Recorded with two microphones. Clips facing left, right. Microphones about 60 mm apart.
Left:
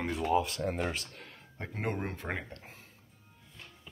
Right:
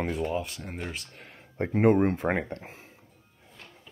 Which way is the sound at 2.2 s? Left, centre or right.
Right.